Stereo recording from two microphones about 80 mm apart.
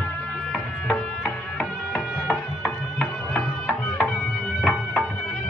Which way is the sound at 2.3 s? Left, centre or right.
Centre.